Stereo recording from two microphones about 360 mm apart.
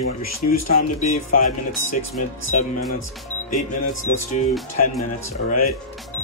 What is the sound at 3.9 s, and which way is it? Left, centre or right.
Speech, left.